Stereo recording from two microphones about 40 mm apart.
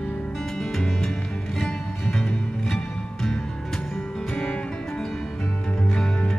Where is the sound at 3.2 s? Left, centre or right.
Centre.